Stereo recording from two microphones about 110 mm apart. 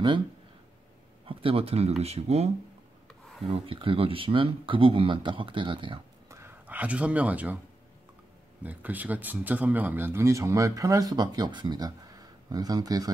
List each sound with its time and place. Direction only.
1.2 s speech: 55° right (ahead or behind); by 2.5 s 75° right (ahead or behind)
3.4 s speech: 55° right (ahead or behind)
6.2 s whispering: 25° right (ahead or behind)
6.7 s speech: 15° right (ahead or behind)
8.6 s speech: 15° right (ahead or behind); by 13.1 s 35° right (ahead or behind)